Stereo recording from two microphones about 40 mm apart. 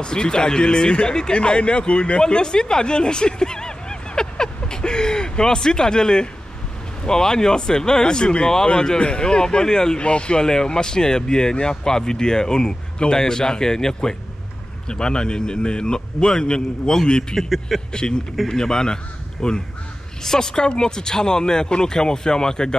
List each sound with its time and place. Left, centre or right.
0.0 s speech: left
17.4 s a sound: centre
18.5 s speech: centre